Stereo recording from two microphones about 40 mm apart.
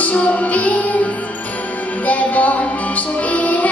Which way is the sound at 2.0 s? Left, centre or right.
Left.